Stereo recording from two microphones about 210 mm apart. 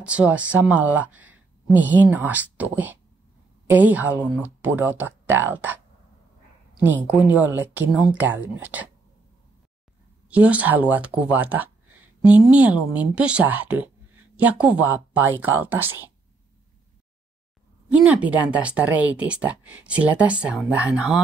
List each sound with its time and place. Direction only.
0.0 s speech: 5° right (ahead or behind)
7.2 s speech: 5° right (ahead or behind)
10.3 s speech: 5° right (ahead or behind)
17.9 s speech: 5° right (ahead or behind)